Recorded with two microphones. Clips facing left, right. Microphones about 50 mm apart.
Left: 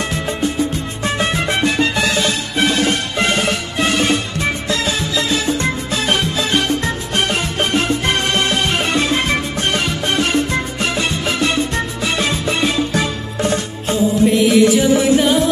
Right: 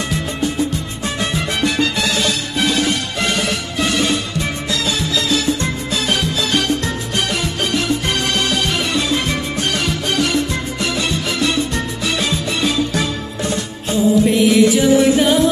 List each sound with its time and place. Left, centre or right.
1.0 s music: left
13.4 s music: left
14.2 s music: centre